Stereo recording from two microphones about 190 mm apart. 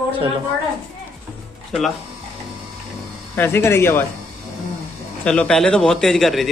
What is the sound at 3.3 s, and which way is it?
Speech, 10° left (ahead or behind).